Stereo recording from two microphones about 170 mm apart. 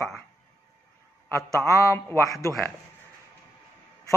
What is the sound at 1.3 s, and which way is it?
Speech, 15° left (ahead or behind).